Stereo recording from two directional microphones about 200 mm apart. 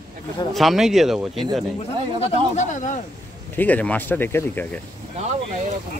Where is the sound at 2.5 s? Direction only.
40° left (ahead or behind).